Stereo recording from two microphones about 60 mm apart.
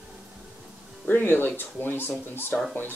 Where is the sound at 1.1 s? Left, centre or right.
Left.